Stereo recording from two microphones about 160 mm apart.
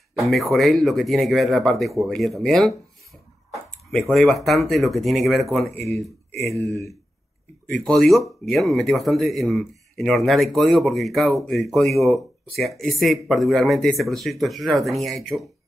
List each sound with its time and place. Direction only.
0.2 s speech: centre (ahead or behind)
4.1 s speech: centre (ahead or behind)
6.6 s speech: 20° left (ahead or behind)
7.6 s speech: centre (ahead or behind)